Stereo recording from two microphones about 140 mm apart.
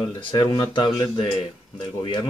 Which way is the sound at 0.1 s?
35° left (ahead or behind).